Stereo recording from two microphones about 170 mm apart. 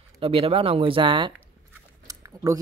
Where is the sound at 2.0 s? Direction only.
20° right (ahead or behind).